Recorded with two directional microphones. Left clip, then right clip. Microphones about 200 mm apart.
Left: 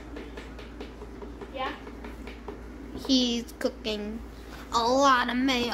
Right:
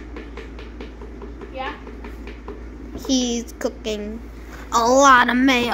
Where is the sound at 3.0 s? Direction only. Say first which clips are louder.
Right 3 dB; 35° left (ahead or behind).